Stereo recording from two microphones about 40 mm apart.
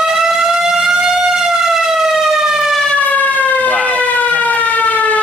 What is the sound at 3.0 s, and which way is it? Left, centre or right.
Siren, left.